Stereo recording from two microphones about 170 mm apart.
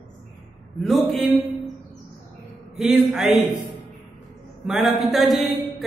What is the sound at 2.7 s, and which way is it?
Speech, centre (ahead or behind).